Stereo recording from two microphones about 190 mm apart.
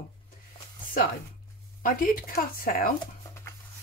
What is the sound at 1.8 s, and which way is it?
Speech, 45° left (ahead or behind).